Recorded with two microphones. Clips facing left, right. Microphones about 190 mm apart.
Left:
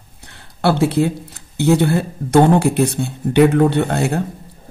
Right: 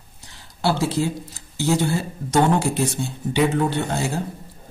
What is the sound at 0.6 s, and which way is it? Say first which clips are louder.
A man's voice: left 6 dB; 60° left (ahead or behind).